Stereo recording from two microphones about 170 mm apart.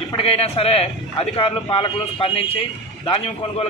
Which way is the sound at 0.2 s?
35° left (ahead or behind).